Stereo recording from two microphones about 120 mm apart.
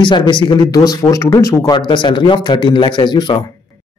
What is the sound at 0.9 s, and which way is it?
Speech, 25° left (ahead or behind).